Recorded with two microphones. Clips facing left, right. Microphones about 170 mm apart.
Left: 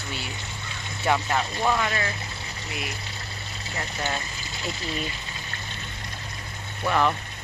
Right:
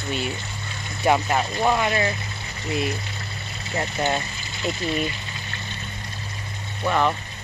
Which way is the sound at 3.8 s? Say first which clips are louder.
Right 7 dB; 30° right (ahead or behind).